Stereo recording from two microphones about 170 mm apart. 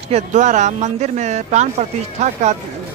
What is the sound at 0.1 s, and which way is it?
Speech, 45° right (ahead or behind).